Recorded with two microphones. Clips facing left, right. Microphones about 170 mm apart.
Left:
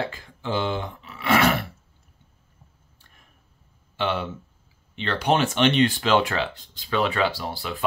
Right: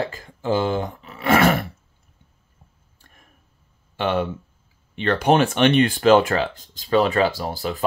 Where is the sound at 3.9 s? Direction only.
45° right (ahead or behind).